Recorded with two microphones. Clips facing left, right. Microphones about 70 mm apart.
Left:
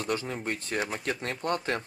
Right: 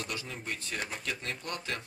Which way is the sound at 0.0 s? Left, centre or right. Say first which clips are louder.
Left 8 dB; left.